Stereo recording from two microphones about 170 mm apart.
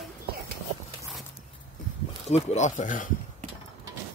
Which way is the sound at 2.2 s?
40° left (ahead or behind).